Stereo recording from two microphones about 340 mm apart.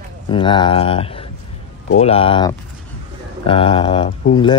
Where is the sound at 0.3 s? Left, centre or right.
Centre.